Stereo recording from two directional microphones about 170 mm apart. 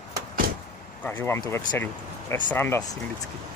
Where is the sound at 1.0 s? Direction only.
10° left (ahead or behind).